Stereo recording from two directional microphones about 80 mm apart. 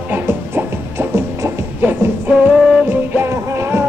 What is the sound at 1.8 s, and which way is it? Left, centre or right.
Music, right.